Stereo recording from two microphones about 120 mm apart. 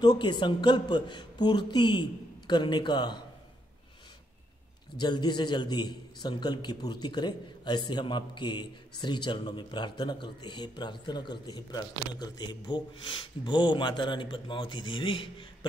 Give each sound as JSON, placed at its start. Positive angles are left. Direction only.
{"t": 0.0, "sound": "a man's voice", "side_deg": 35}
{"t": 4.9, "sound": "a man's voice", "side_deg": 35}